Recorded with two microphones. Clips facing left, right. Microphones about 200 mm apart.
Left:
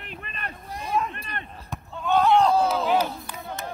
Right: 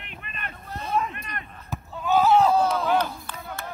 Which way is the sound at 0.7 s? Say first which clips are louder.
Even; 15° left (ahead or behind).